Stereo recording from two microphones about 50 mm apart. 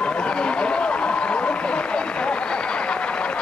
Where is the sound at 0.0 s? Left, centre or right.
Left.